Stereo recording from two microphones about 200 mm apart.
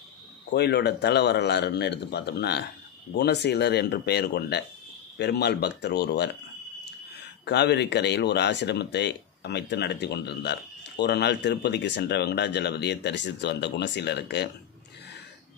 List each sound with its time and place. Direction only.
0.5 s speech: 55° left (ahead or behind)
7.4 s speech: 60° left (ahead or behind)